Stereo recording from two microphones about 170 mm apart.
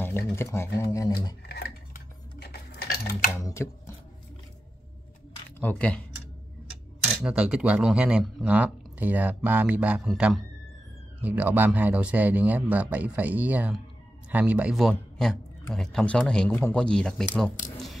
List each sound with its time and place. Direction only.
0.0 s speech: 15° left (ahead or behind)
2.3 s a sound: 70° left (ahead or behind)
3.3 s speech: 20° left (ahead or behind)
5.6 s speech: 10° left (ahead or behind)
7.2 s speech: 5° right (ahead or behind)